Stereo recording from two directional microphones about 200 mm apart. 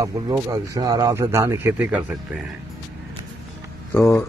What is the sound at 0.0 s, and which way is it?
Speech, 15° right (ahead or behind).